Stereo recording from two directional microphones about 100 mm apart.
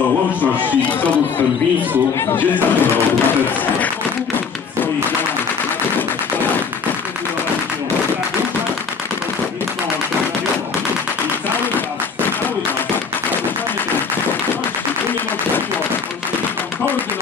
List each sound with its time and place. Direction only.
2.1 s speech: 20° left (ahead or behind)